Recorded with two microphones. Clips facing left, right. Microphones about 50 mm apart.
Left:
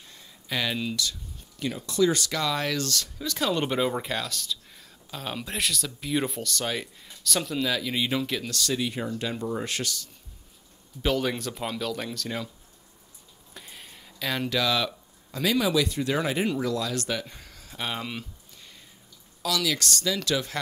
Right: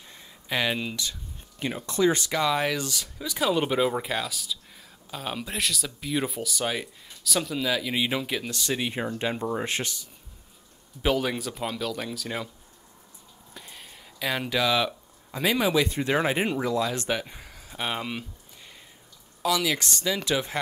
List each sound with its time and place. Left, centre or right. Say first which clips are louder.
0.1 s a sound: right 2 dB; right
1.6 s speech: even; right
11.0 s speech: right 1 dB; centre
13.5 s speech: even; centre; by 20.5 s right